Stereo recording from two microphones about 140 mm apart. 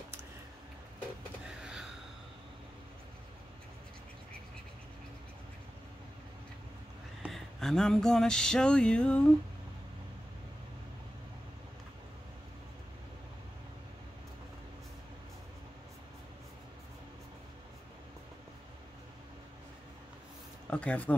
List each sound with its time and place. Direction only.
1.6 s gasp: 5° right (ahead or behind)
7.2 s a sound: centre (ahead or behind)
20.7 s speech: 10° left (ahead or behind)